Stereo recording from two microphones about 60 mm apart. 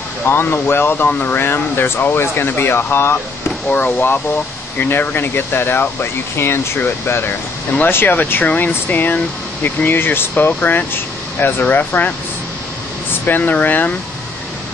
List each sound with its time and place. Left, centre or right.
0.3 s speech: left
1.4 s speech: left
13.4 s speech: left